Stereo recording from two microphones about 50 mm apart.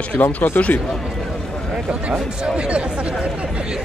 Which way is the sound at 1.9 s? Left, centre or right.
Right.